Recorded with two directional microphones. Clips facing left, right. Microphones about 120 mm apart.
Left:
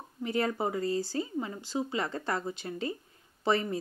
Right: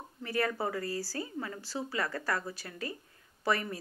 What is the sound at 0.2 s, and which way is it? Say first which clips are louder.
Speech: left 2 dB; 20° left (ahead or behind).